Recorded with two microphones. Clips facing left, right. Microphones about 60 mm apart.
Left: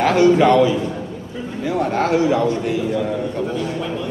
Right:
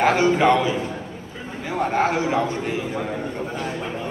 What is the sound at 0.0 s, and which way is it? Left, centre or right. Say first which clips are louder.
A man's voice: left 4 dB; right.